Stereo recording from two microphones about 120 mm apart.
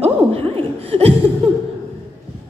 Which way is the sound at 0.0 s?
55° right (ahead or behind).